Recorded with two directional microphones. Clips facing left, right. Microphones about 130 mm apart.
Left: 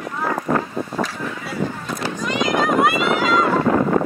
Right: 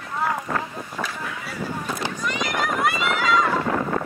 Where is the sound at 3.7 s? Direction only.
60° left (ahead or behind).